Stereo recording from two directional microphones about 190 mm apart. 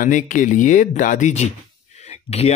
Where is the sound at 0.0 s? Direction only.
40° left (ahead or behind).